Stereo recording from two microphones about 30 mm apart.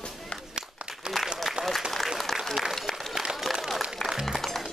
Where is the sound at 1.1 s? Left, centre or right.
Right.